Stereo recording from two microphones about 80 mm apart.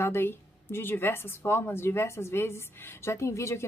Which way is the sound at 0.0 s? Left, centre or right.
Left.